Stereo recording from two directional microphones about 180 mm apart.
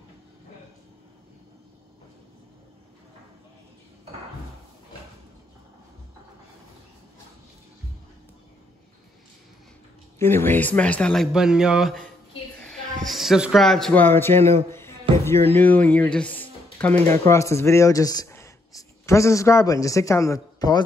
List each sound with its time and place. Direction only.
10.1 s a man's voice: 15° left (ahead or behind); by 12.0 s 5° right (ahead or behind)
13.0 s a man's voice: centre (ahead or behind); by 20.8 s 20° left (ahead or behind)